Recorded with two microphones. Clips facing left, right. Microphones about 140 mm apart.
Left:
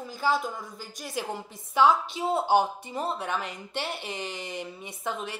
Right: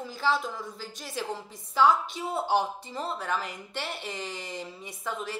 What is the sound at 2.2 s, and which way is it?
Speech, 25° left (ahead or behind).